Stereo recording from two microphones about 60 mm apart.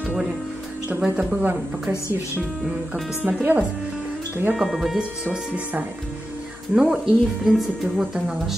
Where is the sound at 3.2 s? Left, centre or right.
Right.